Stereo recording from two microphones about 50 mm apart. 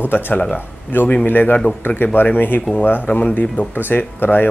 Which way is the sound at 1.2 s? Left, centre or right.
Left.